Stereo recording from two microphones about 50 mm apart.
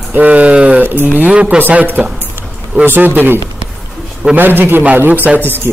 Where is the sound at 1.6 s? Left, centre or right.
Right.